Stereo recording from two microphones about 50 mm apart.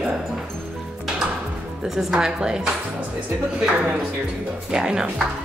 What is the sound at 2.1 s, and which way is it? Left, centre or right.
A woman's voice, centre.